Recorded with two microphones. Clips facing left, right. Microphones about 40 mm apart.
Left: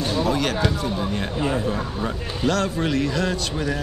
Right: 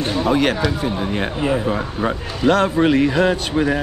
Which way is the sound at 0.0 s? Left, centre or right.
Right.